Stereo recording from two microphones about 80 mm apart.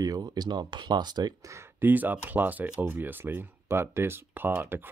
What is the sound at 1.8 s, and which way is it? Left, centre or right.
Speech, right.